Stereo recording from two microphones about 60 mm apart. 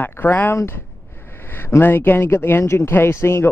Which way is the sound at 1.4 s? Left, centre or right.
Left.